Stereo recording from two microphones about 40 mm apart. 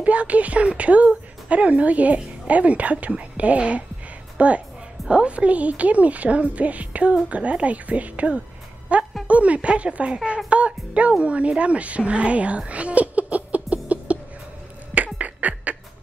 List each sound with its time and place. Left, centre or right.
0.0 s a woman's voice: right
8.9 s music: right
9.3 s a woman's voice: right
15.1 s beatboxing: right